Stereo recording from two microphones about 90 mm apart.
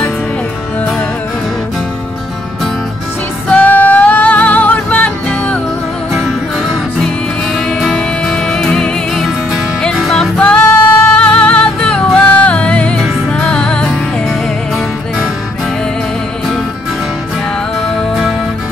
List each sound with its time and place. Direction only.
3.5 s music: 15° left (ahead or behind)
7.5 s music: centre (ahead or behind)